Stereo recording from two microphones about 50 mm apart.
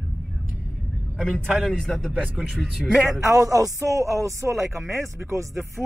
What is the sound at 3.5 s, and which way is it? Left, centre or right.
Speech, right.